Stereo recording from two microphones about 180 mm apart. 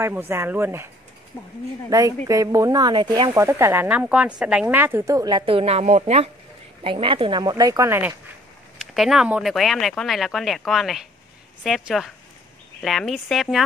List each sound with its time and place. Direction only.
0.0 s speech: 10° right (ahead or behind)
1.3 s speech: 15° left (ahead or behind)
1.9 s speech: 20° right (ahead or behind)
8.9 s speech: centre (ahead or behind)